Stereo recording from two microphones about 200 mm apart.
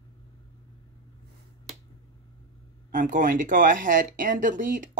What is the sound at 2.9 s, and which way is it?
Speech, 40° right (ahead or behind).